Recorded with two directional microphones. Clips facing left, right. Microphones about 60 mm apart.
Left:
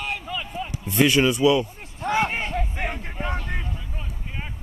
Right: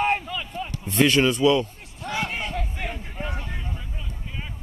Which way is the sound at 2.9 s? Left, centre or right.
Left.